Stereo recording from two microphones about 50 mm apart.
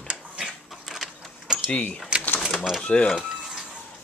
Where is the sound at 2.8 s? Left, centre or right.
Centre.